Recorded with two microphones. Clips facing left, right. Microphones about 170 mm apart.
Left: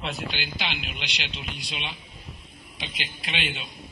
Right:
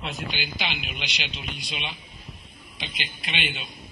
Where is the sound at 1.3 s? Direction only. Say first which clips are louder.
Even; 35° left (ahead or behind).